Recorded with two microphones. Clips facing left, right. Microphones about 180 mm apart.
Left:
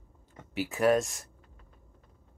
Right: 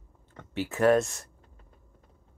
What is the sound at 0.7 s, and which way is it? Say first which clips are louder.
Speech: right 3 dB; 15° left (ahead or behind).